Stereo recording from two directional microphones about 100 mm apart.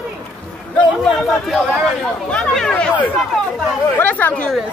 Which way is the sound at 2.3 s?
10° left (ahead or behind).